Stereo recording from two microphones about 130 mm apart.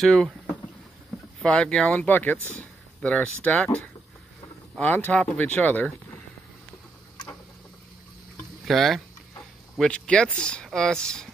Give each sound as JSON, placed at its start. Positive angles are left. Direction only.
{"t": 0.0, "sound": "speech", "side_deg": 0}
{"t": 1.4, "sound": "speech", "side_deg": 5}
{"t": 8.6, "sound": "speech", "side_deg": 0}